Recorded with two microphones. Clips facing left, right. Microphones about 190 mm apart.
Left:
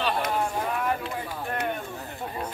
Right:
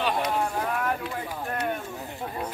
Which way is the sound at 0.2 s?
5° left (ahead or behind).